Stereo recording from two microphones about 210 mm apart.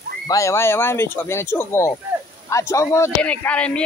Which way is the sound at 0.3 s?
15° left (ahead or behind).